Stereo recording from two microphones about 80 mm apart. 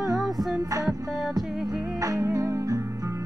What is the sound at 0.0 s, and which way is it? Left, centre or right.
Music, centre.